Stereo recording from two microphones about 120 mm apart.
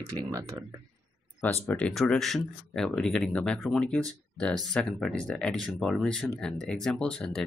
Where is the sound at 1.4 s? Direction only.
15° left (ahead or behind).